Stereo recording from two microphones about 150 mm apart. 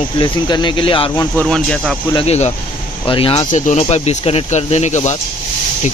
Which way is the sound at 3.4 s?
55° left (ahead or behind).